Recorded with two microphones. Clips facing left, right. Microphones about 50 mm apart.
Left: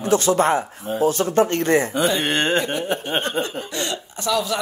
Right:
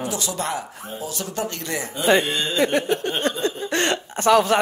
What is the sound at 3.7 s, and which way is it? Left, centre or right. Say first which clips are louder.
Hiccup: right 5 dB; right.